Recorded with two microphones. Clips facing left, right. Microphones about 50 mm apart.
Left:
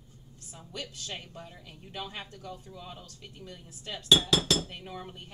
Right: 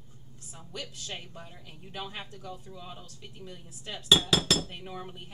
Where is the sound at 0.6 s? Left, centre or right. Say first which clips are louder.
Even; centre.